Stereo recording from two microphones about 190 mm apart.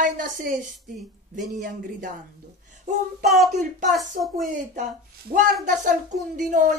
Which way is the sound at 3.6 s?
40° right (ahead or behind).